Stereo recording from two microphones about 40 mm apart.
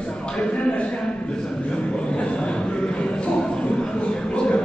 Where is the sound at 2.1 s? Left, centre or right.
Left.